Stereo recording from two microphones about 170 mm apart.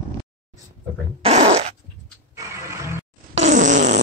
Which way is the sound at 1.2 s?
40° right (ahead or behind).